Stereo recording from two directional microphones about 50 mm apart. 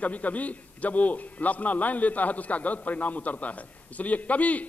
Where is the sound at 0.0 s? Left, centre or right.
Left.